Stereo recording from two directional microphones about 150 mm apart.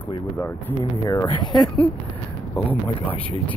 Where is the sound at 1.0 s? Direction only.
25° left (ahead or behind).